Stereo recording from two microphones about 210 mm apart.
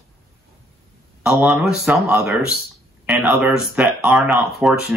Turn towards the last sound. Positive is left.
turn(degrees=-5)  # may be behind; listen again after turning